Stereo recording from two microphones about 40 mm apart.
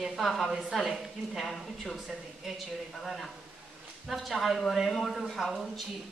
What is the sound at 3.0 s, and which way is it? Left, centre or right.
A woman's voice, centre.